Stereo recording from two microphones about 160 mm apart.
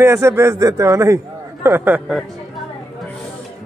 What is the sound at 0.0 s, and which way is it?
A man's voice, 15° right (ahead or behind).